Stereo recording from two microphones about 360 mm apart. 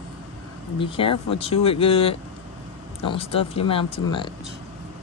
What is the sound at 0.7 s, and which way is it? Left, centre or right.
Speech, centre.